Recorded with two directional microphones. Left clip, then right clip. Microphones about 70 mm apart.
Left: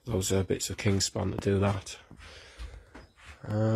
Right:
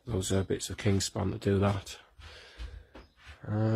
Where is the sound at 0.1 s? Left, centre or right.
Centre.